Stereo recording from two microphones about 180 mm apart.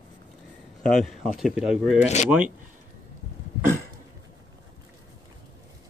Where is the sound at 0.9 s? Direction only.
Centre (ahead or behind).